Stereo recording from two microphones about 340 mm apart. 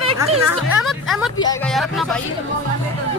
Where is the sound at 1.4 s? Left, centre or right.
Centre.